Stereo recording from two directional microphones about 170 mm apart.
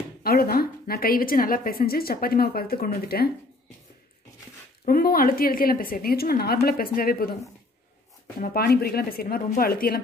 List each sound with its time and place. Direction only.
0.2 s a woman's voice: 60° left (ahead or behind)
4.8 s a woman's voice: 60° left (ahead or behind)
8.4 s a woman's voice: 65° left (ahead or behind)